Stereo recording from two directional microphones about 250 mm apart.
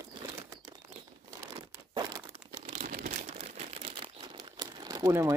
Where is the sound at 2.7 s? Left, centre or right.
Right.